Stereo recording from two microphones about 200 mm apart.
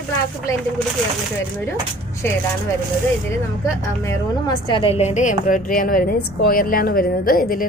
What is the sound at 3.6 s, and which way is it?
A woman's voice, 15° left (ahead or behind).